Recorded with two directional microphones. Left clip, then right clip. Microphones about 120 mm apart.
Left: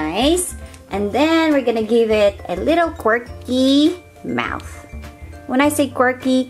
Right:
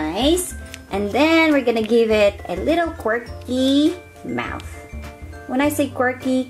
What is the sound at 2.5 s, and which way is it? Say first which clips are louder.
Speech: left 3 dB; 25° left (ahead or behind).